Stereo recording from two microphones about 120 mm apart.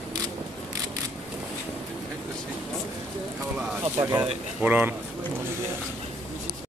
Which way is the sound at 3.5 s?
15° right (ahead or behind).